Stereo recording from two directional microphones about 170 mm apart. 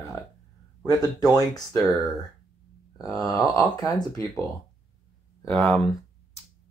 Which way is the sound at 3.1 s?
Centre (ahead or behind).